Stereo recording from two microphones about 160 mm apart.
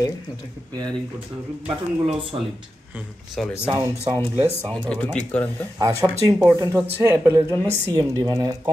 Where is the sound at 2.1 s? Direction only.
35° right (ahead or behind).